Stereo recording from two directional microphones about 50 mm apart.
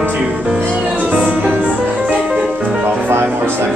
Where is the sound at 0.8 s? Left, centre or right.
Right.